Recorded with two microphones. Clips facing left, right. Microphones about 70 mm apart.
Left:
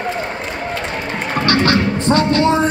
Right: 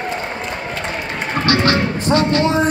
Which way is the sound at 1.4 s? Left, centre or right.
Left.